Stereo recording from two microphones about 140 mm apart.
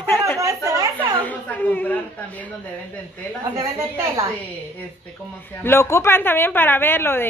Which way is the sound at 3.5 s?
25° right (ahead or behind).